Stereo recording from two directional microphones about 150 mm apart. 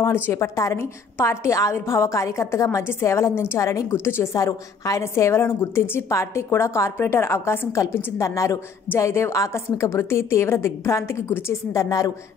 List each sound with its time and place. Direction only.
0.1 s a woman's voice: 15° left (ahead or behind)